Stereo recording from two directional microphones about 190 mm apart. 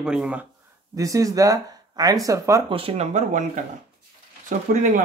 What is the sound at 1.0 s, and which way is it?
Speech, 15° right (ahead or behind).